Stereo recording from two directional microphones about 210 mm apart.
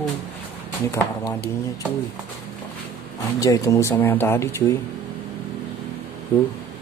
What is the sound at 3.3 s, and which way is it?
Speech, 15° left (ahead or behind).